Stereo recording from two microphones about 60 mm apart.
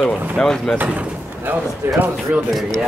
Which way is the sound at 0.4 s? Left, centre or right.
Centre.